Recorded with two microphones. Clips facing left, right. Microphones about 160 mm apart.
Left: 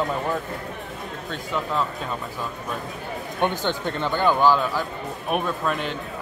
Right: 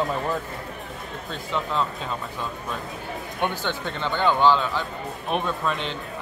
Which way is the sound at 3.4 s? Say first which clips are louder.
Left 3 dB; 15° left (ahead or behind).